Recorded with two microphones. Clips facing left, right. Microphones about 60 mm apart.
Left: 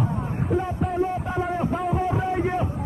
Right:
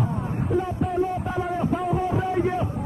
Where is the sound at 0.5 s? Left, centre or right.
Centre.